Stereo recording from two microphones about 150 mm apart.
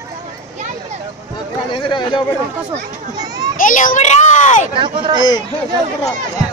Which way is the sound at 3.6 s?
60° left (ahead or behind).